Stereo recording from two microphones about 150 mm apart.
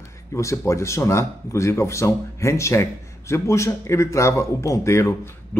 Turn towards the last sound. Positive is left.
turn(degrees=15)  # may be behind; listen again after turning